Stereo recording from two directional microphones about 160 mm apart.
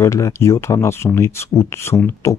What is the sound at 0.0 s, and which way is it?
Speech, 20° left (ahead or behind).